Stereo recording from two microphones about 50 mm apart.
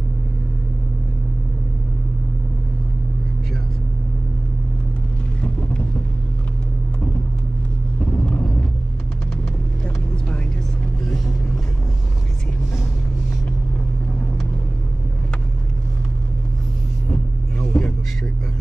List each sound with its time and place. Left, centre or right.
8.0 s vehicle: left
17.1 s vehicle: left